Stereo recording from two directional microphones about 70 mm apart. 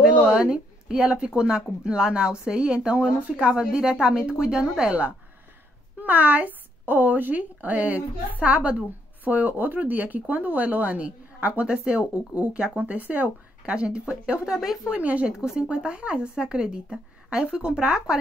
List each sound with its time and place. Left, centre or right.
0.0 s a woman's voice: centre
14.9 s a woman's voice: centre